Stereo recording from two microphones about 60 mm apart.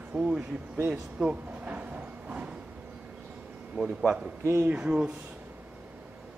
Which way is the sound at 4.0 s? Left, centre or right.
Centre.